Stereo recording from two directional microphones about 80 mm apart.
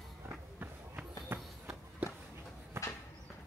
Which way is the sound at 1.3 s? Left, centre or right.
Right.